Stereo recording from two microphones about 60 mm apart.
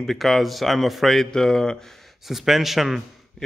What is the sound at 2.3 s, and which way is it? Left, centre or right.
Speech, centre.